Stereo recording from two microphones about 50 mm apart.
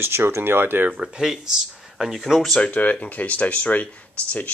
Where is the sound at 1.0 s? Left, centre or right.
Centre.